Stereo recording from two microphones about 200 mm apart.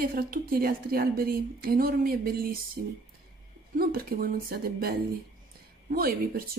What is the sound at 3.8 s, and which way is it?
Speech, 45° right (ahead or behind).